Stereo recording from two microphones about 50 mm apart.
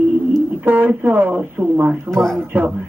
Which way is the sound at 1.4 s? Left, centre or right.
Right.